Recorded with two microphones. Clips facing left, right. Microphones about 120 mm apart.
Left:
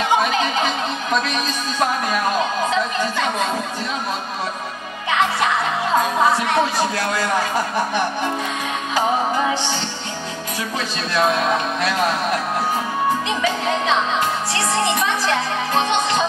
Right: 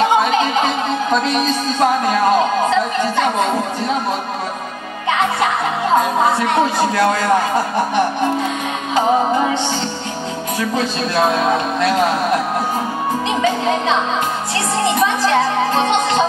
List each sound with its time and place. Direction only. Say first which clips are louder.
0.0 s music: right 4 dB; 25° right (ahead or behind)
1.2 s speech: right 6 dB; 25° right (ahead or behind)
7.0 s speech: right 6 dB; 25° right (ahead or behind)
10.8 s speech: right 2 dB; 25° right (ahead or behind)
13.4 s speech: right 4 dB; 25° right (ahead or behind)
15.7 s speech: right 3 dB; 25° right (ahead or behind)